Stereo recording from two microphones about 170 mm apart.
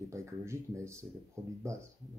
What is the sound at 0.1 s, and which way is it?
Speech, 15° right (ahead or behind).